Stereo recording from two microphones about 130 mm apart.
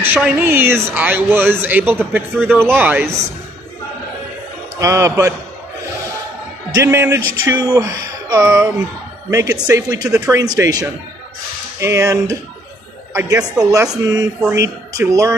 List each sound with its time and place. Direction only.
0.0 s speech: 10° right (ahead or behind)
4.7 s speech: 25° right (ahead or behind)
6.7 s a woman's voice: 20° right (ahead or behind)